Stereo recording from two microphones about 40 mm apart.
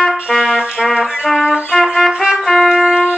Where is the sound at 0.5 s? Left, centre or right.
Right.